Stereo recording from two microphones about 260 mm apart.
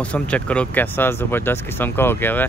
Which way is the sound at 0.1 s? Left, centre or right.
Centre.